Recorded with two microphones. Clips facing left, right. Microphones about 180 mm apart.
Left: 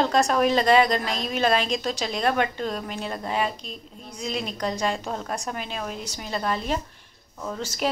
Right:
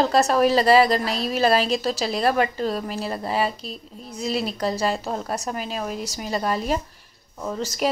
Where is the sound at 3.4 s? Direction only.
35° right (ahead or behind).